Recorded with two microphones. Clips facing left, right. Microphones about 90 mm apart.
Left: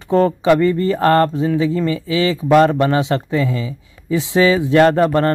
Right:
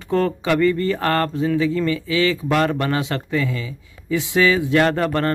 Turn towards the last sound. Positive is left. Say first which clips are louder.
# left 6 dB
turn(degrees=25)  # may be behind; listen again after turning